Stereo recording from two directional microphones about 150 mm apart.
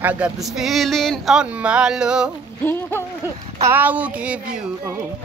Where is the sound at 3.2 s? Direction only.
10° right (ahead or behind).